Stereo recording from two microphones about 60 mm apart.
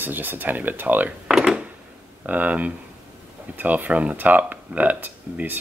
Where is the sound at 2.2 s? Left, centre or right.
Right.